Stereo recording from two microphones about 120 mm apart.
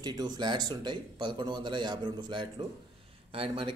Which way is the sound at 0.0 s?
35° right (ahead or behind).